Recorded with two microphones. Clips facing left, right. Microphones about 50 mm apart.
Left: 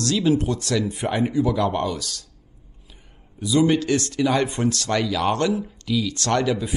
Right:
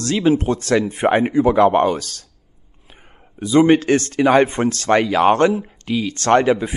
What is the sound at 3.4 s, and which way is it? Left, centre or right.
Speech, right.